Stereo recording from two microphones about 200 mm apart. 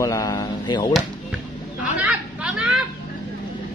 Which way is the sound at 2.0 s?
5° right (ahead or behind).